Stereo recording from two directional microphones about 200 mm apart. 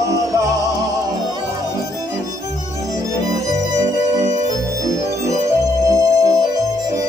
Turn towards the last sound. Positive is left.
turn(degrees=-15)  # may be behind; listen again after turning